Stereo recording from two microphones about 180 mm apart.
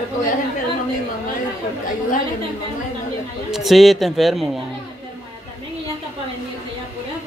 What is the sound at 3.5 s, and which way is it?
A man's voice, centre (ahead or behind).